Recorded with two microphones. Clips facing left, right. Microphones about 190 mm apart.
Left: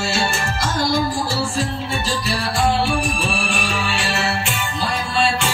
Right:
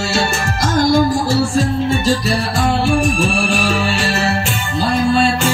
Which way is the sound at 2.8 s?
40° right (ahead or behind).